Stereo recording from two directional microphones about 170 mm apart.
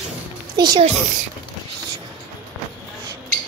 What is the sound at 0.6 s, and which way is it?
Speech, 25° right (ahead or behind).